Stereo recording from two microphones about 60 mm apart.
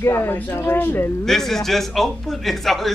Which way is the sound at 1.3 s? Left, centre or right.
Centre.